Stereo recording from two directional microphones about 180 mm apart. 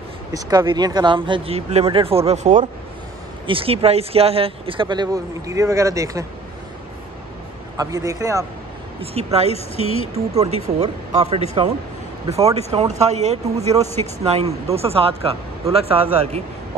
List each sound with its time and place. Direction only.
0.3 s speech: 25° right (ahead or behind)
7.7 s a man's voice: 20° right (ahead or behind)
9.0 s speech: 35° right (ahead or behind)
9.8 s speech: 30° left (ahead or behind)
10.4 s speech: 35° right (ahead or behind)
12.7 s speech: 35° right (ahead or behind)